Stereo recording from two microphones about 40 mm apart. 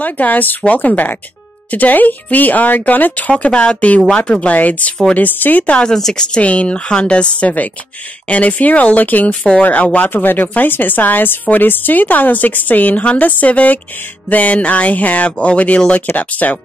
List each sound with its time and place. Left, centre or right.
0.0 s a woman's voice: left
3.3 s speech: left
4.6 s a woman's voice: left
5.6 s a woman's voice: left